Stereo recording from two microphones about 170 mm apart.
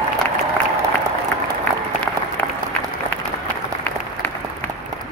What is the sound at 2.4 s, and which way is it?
Applause, 10° left (ahead or behind).